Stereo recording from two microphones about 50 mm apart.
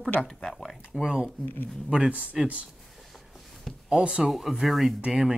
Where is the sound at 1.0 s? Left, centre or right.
Centre.